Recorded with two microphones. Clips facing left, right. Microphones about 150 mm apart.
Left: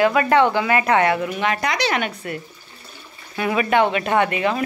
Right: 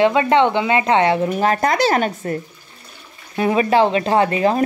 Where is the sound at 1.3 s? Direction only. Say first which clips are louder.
Right 5 dB; 40° right (ahead or behind).